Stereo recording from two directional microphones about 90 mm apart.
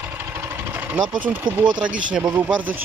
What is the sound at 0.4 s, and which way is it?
Engine, 20° right (ahead or behind).